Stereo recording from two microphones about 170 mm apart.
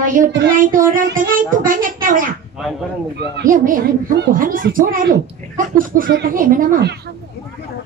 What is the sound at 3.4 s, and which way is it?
Speech, 55° right (ahead or behind).